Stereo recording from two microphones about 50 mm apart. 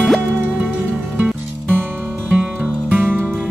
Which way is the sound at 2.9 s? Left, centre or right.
Right.